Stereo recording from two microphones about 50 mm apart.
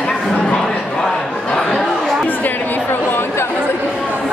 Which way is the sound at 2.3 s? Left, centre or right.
Left.